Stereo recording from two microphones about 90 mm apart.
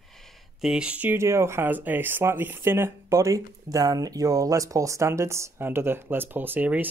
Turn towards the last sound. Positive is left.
turn(degrees=-20)  # may be behind; listen again after turning